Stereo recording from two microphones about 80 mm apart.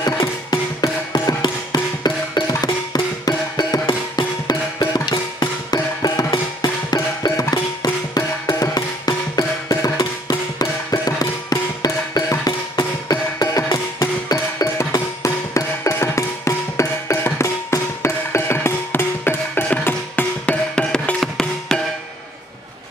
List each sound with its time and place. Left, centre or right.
0.0 s music: left
3.8 s music: left; by 21.8 s centre